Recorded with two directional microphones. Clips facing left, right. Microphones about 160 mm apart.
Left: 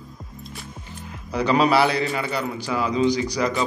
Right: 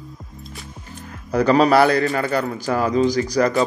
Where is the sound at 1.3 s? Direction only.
45° right (ahead or behind).